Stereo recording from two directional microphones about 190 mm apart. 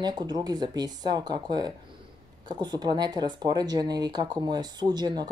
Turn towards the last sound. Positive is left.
turn(degrees=-20)  # may be behind; listen again after turning